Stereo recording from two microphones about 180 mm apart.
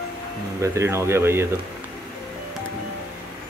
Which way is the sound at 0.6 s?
15° right (ahead or behind).